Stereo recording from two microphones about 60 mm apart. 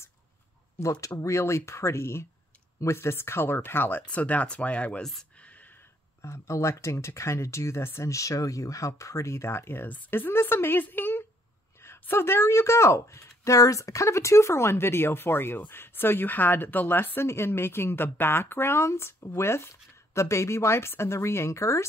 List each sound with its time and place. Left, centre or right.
1.0 s speech: left
5.4 s a sound: left
6.2 s speech: left